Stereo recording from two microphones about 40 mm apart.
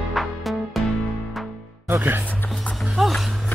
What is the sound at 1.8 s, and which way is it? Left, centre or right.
Music, right.